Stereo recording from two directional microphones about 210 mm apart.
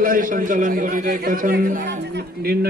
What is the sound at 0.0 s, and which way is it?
A man's voice, 40° right (ahead or behind).